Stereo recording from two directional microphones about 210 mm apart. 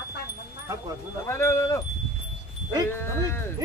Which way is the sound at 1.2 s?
10° left (ahead or behind).